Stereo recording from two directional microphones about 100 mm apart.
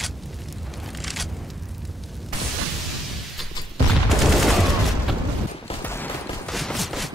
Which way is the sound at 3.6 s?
45° left (ahead or behind).